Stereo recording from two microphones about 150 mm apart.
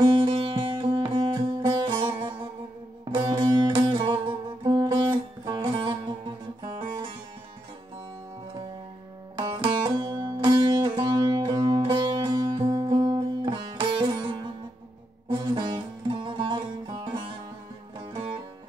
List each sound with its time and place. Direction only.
0.2 s music: 35° right (ahead or behind)
3.2 s sitar: 25° right (ahead or behind)
9.4 s music: 30° right (ahead or behind)
12.6 s sitar: 30° right (ahead or behind)
15.2 s music: 35° right (ahead or behind)